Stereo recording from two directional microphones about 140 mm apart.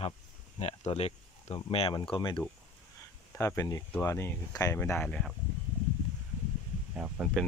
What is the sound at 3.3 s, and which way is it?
Speech, 20° left (ahead or behind).